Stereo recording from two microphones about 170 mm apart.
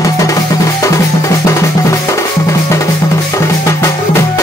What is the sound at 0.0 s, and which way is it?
Music, 20° left (ahead or behind).